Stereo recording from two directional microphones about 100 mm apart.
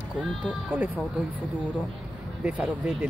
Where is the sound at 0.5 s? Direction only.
15° right (ahead or behind).